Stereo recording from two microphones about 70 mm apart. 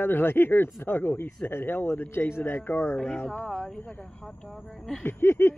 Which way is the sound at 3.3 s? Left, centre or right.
Centre.